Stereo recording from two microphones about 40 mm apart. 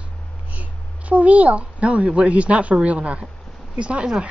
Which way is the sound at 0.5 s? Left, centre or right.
Right.